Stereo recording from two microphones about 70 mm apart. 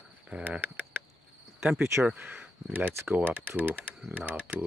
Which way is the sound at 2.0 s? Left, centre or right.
Right.